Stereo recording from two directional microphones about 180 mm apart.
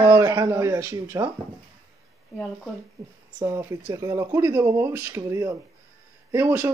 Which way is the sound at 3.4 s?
15° right (ahead or behind).